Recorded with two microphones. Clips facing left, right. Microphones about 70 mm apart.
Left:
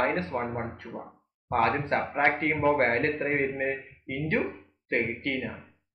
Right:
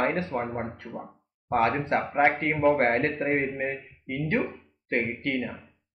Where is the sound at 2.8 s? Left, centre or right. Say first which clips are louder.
Right 1 dB; right.